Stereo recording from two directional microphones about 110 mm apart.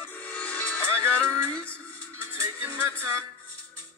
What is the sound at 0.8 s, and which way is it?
Music, 25° right (ahead or behind).